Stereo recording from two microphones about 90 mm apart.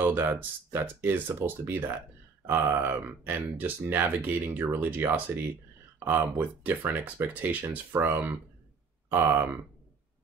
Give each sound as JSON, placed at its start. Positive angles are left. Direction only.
{"t": 0.0, "sound": "speech", "side_deg": -20}